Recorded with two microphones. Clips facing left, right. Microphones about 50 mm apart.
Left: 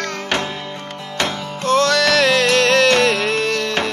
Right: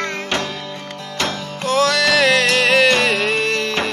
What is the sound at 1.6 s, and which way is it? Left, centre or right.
Music, centre.